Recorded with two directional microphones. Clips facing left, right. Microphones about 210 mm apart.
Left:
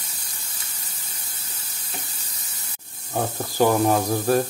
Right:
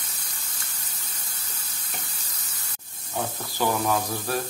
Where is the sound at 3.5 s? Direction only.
45° left (ahead or behind).